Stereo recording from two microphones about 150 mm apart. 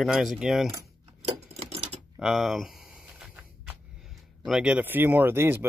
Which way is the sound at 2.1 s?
Centre (ahead or behind).